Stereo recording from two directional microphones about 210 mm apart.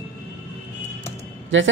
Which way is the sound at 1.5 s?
65° right (ahead or behind).